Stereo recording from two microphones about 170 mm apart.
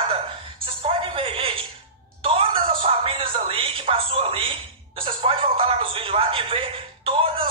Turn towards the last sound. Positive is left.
turn(degrees=-30)  # may be behind; listen again after turning